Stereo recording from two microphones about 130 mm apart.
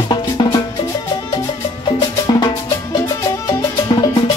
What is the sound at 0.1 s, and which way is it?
Music, 35° left (ahead or behind).